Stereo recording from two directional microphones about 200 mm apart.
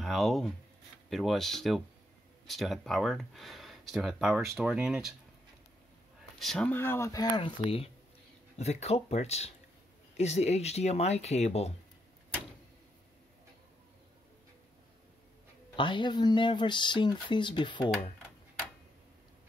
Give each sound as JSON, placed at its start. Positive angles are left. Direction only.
{"t": 0.0, "sound": "speech", "side_deg": 0}
{"t": 6.4, "sound": "speech", "side_deg": 5}
{"t": 15.7, "sound": "speech", "side_deg": 25}